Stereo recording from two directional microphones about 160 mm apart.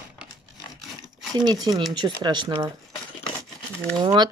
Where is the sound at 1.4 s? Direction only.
25° right (ahead or behind).